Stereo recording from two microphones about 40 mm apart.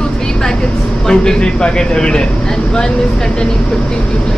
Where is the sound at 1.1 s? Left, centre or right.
Left.